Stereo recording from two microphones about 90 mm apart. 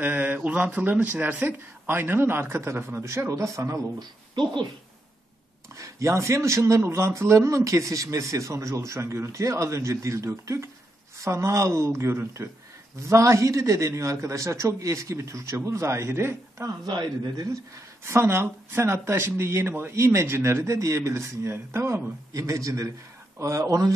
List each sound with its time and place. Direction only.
0.0 s speech: 20° right (ahead or behind); by 4.1 s 35° right (ahead or behind)
5.8 s a man's voice: 35° right (ahead or behind)
16.8 s speech: 55° right (ahead or behind)
18.0 s a man's voice: 30° right (ahead or behind)